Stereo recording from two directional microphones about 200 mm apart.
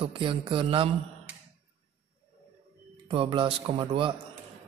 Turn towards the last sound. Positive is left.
turn(degrees=-25)  # may be behind; listen again after turning